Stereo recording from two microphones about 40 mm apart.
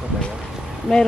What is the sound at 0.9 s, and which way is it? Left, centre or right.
Speech, centre.